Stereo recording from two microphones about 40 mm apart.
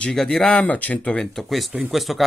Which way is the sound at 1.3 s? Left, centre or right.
Centre.